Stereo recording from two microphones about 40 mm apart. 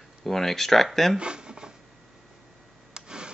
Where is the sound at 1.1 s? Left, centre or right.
Right.